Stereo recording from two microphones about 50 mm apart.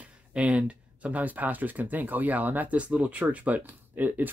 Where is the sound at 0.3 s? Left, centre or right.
Right.